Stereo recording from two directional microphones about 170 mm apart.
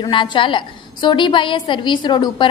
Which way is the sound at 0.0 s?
30° left (ahead or behind).